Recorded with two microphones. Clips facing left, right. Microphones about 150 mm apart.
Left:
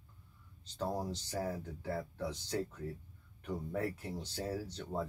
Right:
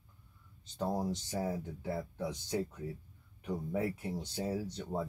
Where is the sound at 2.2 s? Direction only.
10° right (ahead or behind).